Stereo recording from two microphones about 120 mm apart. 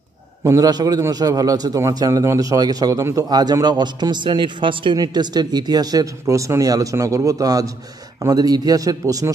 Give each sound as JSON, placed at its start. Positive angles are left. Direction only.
{"t": 0.4, "sound": "a man's voice", "side_deg": -25}